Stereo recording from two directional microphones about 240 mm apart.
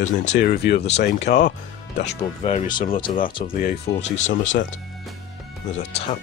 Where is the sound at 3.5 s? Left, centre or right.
Left.